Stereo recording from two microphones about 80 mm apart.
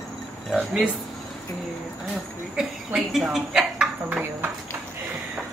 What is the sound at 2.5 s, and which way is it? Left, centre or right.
Speech, centre.